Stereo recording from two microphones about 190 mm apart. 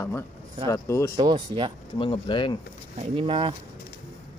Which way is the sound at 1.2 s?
25° right (ahead or behind).